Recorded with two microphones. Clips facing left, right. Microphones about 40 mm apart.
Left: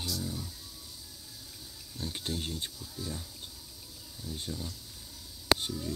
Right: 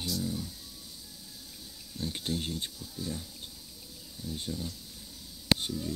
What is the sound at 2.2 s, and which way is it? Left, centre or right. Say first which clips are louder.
Speech: right 2 dB; right.